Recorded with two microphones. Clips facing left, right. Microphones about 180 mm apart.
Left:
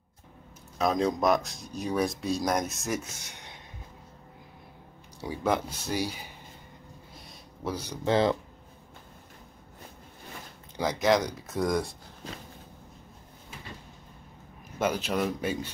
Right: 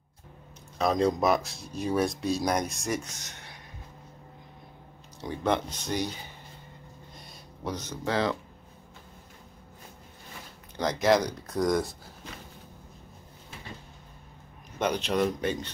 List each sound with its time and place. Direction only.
0.7 s speech: centre (ahead or behind)
5.2 s speech: 5° left (ahead or behind)
7.2 s a sound: centre (ahead or behind)
8.0 s speech: 25° left (ahead or behind)
10.8 s speech: centre (ahead or behind)
14.8 s speech: 5° left (ahead or behind)